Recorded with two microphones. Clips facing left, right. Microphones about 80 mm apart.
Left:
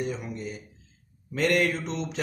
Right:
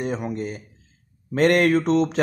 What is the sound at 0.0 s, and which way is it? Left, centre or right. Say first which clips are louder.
Speech: right 6 dB; right.